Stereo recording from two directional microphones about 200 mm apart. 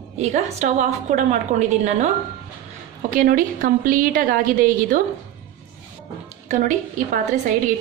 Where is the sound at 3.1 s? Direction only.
45° right (ahead or behind).